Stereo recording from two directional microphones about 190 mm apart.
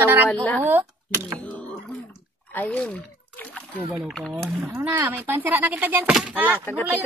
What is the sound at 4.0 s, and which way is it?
Speech, 5° left (ahead or behind).